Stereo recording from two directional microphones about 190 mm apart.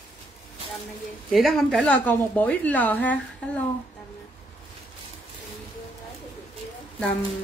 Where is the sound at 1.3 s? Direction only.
Centre (ahead or behind).